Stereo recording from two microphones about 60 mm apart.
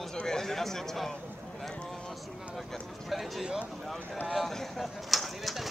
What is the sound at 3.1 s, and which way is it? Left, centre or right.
Speech, centre.